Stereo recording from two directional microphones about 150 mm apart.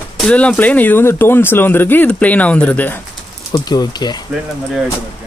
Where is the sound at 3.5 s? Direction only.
25° left (ahead or behind).